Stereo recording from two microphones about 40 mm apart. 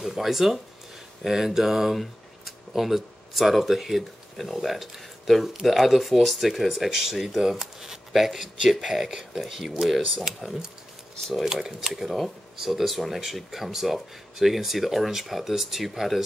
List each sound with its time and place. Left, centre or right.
0.0 s speech: centre
7.4 s a sound: centre
8.2 s speech: centre